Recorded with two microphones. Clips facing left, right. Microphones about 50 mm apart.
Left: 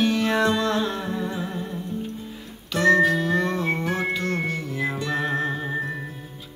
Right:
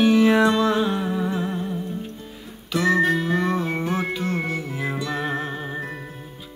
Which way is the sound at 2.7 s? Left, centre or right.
Centre.